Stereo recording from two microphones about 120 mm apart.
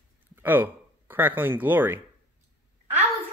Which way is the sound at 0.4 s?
15° right (ahead or behind).